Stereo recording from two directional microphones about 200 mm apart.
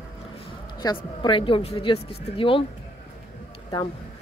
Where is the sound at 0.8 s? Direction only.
20° left (ahead or behind).